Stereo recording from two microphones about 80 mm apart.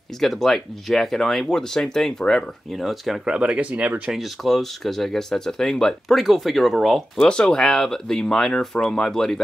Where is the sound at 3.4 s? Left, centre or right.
Centre.